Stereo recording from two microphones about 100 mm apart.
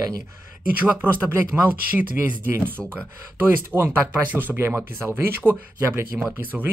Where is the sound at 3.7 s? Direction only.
10° right (ahead or behind).